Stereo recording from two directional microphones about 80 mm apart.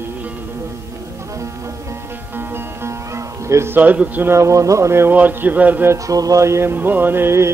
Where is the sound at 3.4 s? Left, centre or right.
Right.